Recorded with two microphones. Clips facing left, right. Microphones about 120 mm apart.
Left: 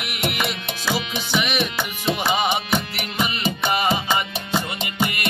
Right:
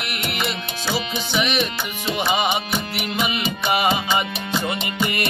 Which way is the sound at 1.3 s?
5° left (ahead or behind).